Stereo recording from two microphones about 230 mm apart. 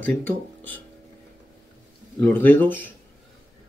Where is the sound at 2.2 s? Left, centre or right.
Centre.